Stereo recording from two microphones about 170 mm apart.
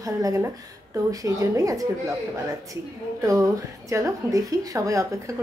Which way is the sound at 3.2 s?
20° right (ahead or behind).